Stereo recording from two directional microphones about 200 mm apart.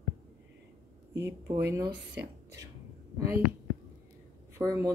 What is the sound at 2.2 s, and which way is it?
Whispering, 15° right (ahead or behind).